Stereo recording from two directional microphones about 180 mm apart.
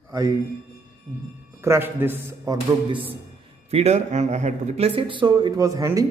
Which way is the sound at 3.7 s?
35° right (ahead or behind).